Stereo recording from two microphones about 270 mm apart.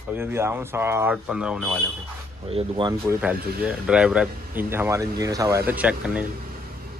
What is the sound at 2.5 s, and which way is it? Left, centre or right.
Speech, centre.